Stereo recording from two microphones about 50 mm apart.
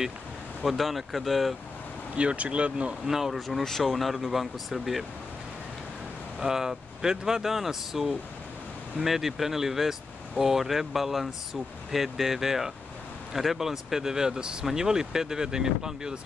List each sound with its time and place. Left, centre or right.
0.7 s speech: centre
2.1 s speech: right
3.1 s speech: centre
3.3 s speech: centre
6.4 s speech: centre